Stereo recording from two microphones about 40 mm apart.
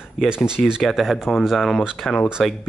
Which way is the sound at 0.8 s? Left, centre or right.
Centre.